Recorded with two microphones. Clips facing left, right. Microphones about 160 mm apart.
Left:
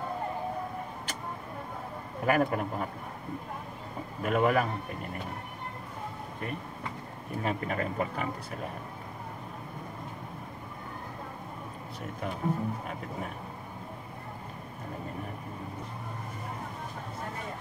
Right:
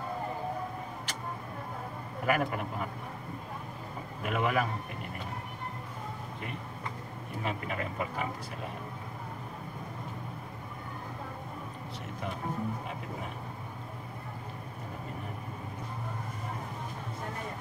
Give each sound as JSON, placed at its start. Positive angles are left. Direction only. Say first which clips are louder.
{"t": 2.2, "sound": "speech", "louder": "left 3 dB", "side_deg": 40}
{"t": 4.2, "sound": "speech", "louder": "left 4 dB", "side_deg": 45}
{"t": 7.4, "sound": "speech", "louder": "left 4 dB", "side_deg": 45}